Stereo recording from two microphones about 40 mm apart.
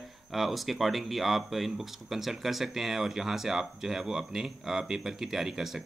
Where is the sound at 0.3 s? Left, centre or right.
Centre.